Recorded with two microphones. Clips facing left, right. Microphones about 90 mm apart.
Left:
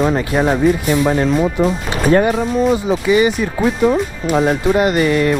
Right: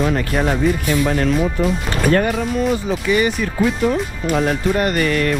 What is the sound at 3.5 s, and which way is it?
Speech, 20° left (ahead or behind).